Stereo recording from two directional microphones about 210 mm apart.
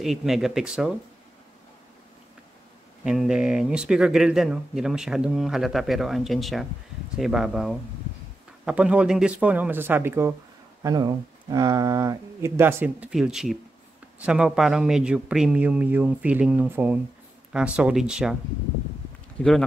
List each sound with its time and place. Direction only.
0.0 s speech: centre (ahead or behind)
3.0 s speech: 5° right (ahead or behind)
19.4 s speech: 5° left (ahead or behind)